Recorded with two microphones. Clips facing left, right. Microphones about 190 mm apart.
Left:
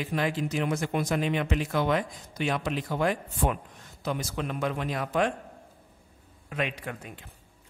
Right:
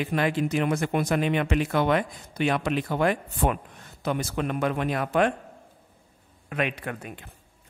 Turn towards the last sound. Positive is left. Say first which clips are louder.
# right 3 dB
turn(degrees=-60)  # may be behind; listen again after turning